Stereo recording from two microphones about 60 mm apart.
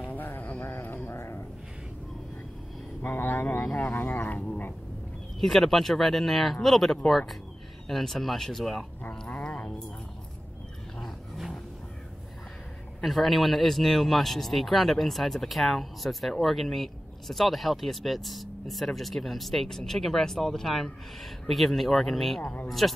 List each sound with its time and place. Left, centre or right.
0.1 s a sound: left
1.1 s a sound: left
3.0 s speech: left
5.4 s speech: centre
9.4 s music: left
13.0 s speech: centre